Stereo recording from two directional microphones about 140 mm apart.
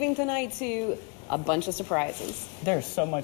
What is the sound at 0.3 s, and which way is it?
A man's voice, 10° left (ahead or behind).